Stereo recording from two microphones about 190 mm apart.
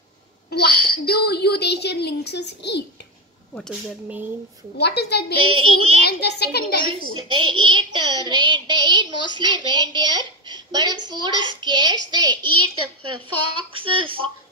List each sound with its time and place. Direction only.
0.5 s a sound: 55° left (ahead or behind)
4.7 s a child's voice: 60° left (ahead or behind)
5.4 s child singing: 25° right (ahead or behind)
6.0 s a child's voice: 60° left (ahead or behind)
7.2 s child singing: 25° right (ahead or behind)
13.6 s child singing: 25° right (ahead or behind)